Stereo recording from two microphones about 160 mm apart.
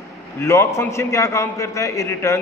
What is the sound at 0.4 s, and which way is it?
A man's voice, 15° left (ahead or behind).